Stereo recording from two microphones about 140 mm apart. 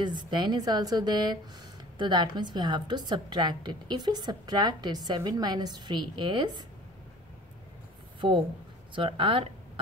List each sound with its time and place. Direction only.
0.0 s a woman's voice: 30° right (ahead or behind)
8.9 s a woman's voice: 40° right (ahead or behind)